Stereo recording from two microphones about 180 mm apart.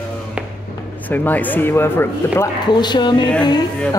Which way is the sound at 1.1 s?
10° left (ahead or behind).